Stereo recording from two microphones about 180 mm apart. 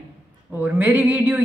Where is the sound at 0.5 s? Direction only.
10° right (ahead or behind).